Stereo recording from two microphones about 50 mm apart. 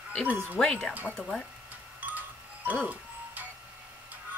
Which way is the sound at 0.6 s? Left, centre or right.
Centre.